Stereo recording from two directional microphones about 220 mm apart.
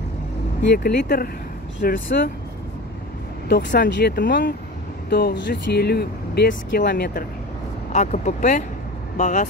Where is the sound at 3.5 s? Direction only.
40° left (ahead or behind).